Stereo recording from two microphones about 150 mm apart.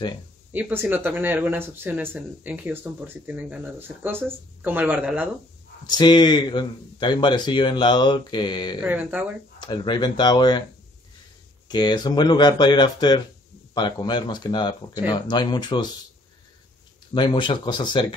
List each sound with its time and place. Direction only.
0.5 s speech: 10° right (ahead or behind)
5.9 s speech: 30° left (ahead or behind)
8.8 s speech: 10° right (ahead or behind)
9.6 s speech: 30° left (ahead or behind)
11.7 s speech: 25° left (ahead or behind)
17.1 s speech: 30° left (ahead or behind)